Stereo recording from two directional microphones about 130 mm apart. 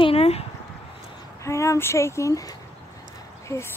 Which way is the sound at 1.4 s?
25° left (ahead or behind).